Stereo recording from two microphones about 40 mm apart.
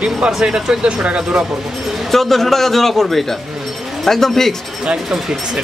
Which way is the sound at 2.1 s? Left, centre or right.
Centre.